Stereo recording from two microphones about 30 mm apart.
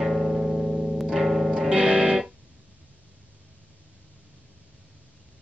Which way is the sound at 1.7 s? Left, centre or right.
Right.